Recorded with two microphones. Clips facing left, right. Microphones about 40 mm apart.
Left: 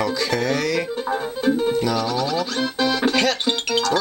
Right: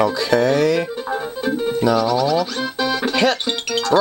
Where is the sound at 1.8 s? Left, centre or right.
Centre.